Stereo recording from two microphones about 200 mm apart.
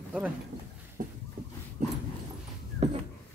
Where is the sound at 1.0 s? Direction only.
45° right (ahead or behind).